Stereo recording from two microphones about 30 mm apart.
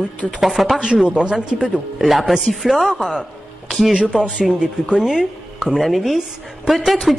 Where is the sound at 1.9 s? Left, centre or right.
Centre.